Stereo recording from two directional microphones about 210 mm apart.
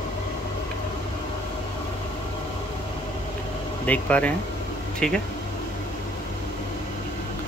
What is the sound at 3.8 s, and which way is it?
Speech, 5° left (ahead or behind).